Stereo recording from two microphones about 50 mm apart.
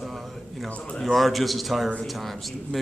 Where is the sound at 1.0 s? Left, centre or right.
Centre.